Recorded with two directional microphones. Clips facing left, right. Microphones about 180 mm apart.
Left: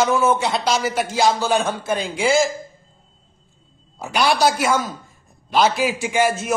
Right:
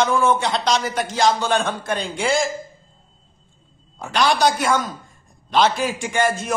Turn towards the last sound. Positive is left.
turn(degrees=5)  # may be behind; listen again after turning